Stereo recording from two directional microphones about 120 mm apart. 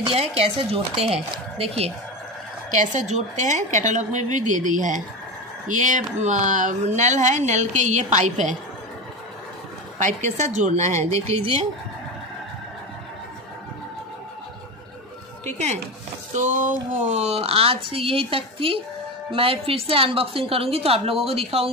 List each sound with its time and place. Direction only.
0.1 s a man's voice: 55° right (ahead or behind)
2.7 s a woman's voice: 90° right
9.9 s speech: 85° right; by 11.6 s 60° right (ahead or behind)
15.4 s speech: 70° right (ahead or behind)
16.3 s a man's voice: 90° right; by 21.6 s 55° right (ahead or behind)